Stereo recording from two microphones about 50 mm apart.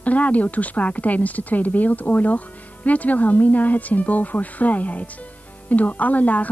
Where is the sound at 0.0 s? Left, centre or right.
Left.